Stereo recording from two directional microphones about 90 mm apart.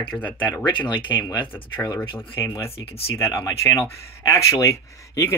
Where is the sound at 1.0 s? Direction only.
60° left (ahead or behind).